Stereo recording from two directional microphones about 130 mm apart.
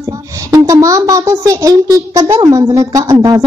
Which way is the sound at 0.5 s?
25° right (ahead or behind).